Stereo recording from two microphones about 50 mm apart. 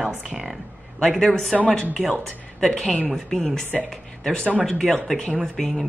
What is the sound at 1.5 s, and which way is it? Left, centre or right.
A woman's voice, centre.